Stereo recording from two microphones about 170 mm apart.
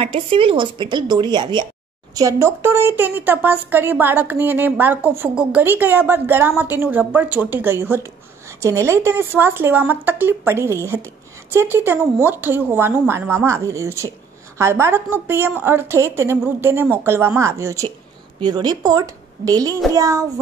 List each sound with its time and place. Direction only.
0.0 s a woman's voice: 30° right (ahead or behind)